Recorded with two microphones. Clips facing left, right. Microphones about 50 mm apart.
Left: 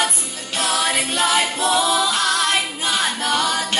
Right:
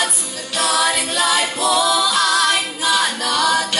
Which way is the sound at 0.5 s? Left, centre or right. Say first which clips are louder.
Right 2 dB; left.